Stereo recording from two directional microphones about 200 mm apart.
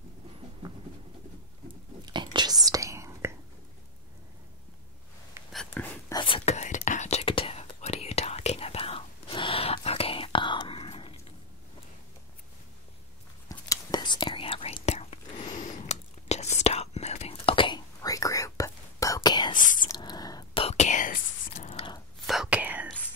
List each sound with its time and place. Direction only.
2.1 s whispering: 20° right (ahead or behind)
5.5 s a sound: centre (ahead or behind)
6.0 s whispering: 25° left (ahead or behind)
13.5 s whispering: 20° left (ahead or behind)
19.5 s whispering: 40° left (ahead or behind)
19.8 s whispering: 20° left (ahead or behind); by 21.7 s 40° left (ahead or behind)
21.7 s whispering: 25° left (ahead or behind)
22.2 s whispering: centre (ahead or behind)